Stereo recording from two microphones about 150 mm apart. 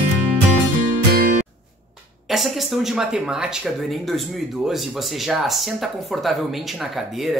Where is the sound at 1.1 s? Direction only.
90° right.